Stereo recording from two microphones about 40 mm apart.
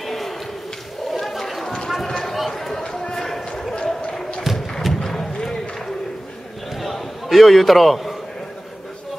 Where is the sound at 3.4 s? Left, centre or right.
Left.